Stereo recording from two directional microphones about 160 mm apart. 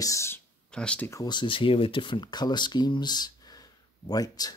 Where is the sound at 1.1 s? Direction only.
25° left (ahead or behind).